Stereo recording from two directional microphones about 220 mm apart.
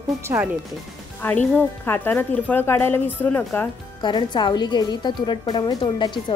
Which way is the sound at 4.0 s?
20° left (ahead or behind).